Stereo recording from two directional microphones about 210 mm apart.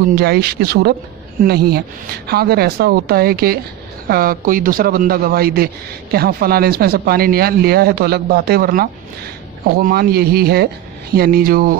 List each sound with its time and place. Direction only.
0.1 s speech: 50° right (ahead or behind)